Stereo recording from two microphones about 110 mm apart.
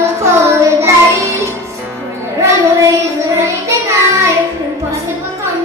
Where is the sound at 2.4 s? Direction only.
25° right (ahead or behind).